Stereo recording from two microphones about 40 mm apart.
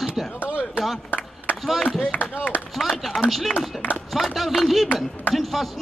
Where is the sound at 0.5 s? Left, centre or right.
Right.